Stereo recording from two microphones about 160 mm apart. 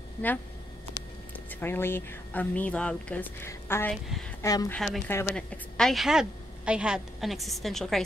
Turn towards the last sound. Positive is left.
turn(degrees=0)  # may be behind; listen again after turning